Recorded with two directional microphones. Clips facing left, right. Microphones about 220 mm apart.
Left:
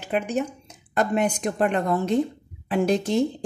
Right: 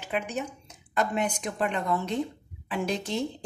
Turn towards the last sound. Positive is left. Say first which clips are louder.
# left 8 dB
turn(degrees=45)  # may be behind; listen again after turning